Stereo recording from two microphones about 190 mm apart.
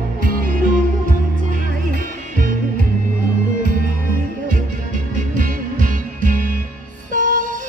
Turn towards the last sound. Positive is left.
turn(degrees=-45)  # may be behind; listen again after turning